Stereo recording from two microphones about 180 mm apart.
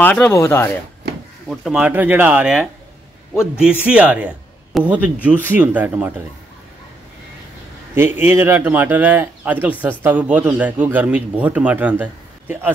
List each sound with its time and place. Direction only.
0.0 s speech: 10° left (ahead or behind)
1.0 s a sound: 65° right (ahead or behind)
1.5 s a man's voice: centre (ahead or behind)
7.9 s a man's voice: 15° right (ahead or behind)